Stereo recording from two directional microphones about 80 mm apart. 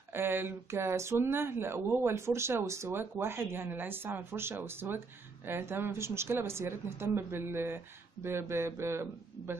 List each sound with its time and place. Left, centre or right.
0.1 s speech: right